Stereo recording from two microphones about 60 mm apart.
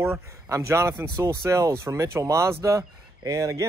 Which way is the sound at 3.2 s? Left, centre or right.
Right.